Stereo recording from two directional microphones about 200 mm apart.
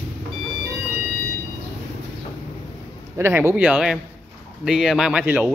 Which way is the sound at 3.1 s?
10° right (ahead or behind).